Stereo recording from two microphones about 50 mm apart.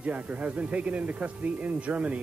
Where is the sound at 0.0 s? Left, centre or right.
Right.